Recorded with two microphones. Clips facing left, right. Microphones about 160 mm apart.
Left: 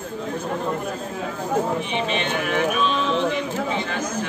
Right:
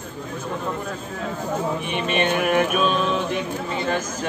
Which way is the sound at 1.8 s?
55° right (ahead or behind).